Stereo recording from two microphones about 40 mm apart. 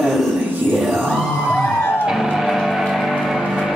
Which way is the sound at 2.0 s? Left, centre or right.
Centre.